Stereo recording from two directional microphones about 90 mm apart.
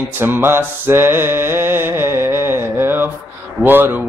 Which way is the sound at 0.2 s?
25° right (ahead or behind).